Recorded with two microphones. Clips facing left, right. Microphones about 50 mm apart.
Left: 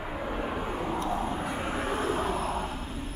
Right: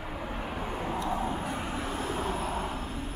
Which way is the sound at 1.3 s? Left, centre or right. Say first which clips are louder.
Left 2 dB; centre.